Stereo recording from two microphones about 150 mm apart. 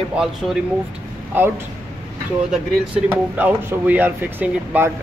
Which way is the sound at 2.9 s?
10° right (ahead or behind).